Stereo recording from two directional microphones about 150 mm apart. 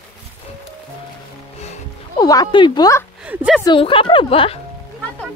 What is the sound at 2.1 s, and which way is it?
Speech, 25° left (ahead or behind).